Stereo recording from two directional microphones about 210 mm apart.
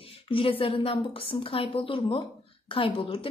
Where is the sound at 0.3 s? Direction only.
25° left (ahead or behind).